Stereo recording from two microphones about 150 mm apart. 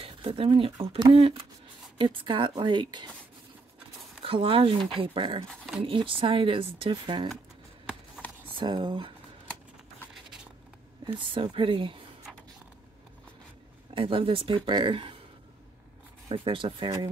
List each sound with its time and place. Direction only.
0.0 s speech: 40° right (ahead or behind)
0.7 s speech: 25° right (ahead or behind)
1.1 s speech: 40° right (ahead or behind)
4.2 s speech: 35° right (ahead or behind)
8.5 s speech: 35° right (ahead or behind)
11.1 s speech: 35° right (ahead or behind)
13.9 s speech: 35° right (ahead or behind)
16.3 s speech: 35° right (ahead or behind)